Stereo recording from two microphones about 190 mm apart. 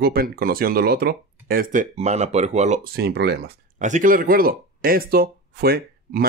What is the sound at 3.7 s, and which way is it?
Speech, 40° right (ahead or behind).